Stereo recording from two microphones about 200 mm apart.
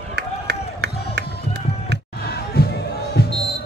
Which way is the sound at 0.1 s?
55° right (ahead or behind).